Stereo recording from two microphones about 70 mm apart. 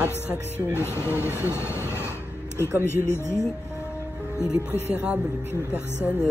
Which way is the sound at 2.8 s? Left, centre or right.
Left.